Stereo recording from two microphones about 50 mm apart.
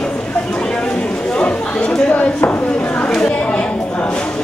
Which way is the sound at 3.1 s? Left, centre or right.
Centre.